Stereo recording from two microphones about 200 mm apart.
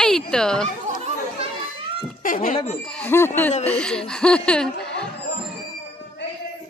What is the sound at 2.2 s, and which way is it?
Speech, 40° left (ahead or behind).